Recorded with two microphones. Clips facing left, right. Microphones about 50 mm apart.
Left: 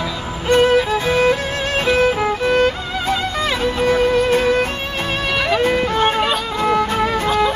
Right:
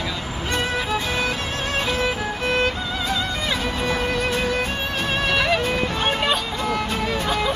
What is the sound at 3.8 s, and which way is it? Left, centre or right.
Music, left.